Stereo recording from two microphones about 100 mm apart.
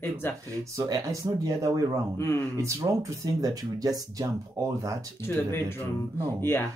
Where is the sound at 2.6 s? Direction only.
30° right (ahead or behind).